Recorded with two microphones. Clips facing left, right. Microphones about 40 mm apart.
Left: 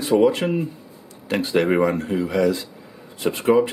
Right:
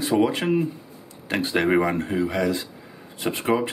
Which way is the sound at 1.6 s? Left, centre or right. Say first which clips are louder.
Left 2 dB; centre.